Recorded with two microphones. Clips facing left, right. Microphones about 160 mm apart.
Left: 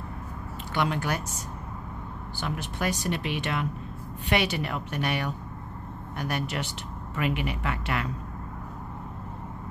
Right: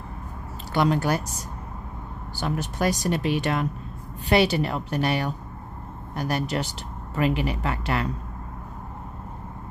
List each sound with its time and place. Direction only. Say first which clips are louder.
0.7 s speech: right 6 dB; 35° right (ahead or behind)